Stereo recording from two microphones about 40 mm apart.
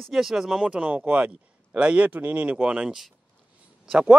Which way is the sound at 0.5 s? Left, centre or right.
Right.